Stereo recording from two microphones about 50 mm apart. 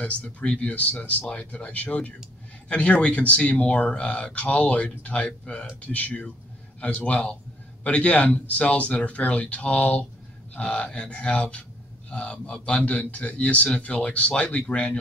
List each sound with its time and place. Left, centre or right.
0.0 s a man's voice: left